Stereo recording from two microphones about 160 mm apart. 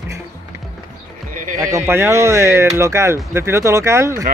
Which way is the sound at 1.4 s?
55° right (ahead or behind).